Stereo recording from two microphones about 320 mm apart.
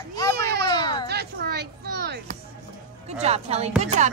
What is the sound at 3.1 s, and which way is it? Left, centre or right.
Speech, centre.